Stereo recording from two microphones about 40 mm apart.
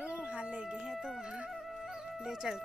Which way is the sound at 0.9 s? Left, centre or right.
Centre.